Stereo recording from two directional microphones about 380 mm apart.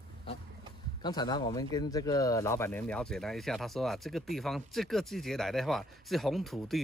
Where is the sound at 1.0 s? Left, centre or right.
Centre.